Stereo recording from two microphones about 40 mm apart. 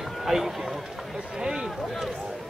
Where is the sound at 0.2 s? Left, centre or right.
Centre.